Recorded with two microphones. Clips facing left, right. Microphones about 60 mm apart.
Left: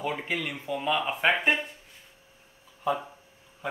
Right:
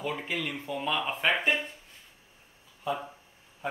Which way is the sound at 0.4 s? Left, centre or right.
Centre.